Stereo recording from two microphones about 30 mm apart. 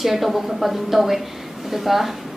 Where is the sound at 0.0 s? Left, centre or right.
Centre.